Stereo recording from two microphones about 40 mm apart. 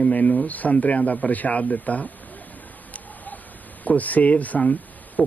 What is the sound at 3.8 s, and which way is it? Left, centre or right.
Speech, left.